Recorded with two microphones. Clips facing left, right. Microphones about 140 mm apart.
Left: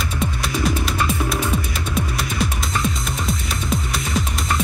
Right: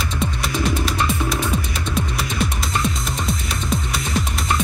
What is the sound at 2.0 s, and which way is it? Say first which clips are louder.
Music: even; centre (ahead or behind).